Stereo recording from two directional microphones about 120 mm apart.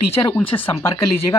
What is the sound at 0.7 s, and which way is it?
Speech, 25° left (ahead or behind).